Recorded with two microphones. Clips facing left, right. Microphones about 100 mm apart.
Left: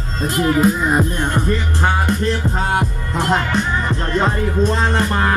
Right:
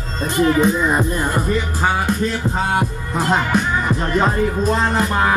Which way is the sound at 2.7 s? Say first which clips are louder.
Even; 5° right (ahead or behind).